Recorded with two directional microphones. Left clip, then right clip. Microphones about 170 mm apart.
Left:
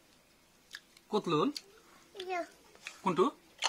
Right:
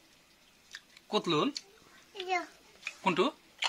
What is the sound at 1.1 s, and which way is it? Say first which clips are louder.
Speech: right 1 dB; 20° right (ahead or behind).